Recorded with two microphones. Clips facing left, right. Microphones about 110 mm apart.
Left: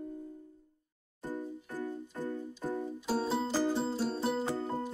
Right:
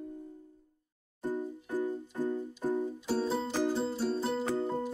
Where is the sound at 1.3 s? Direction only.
15° right (ahead or behind).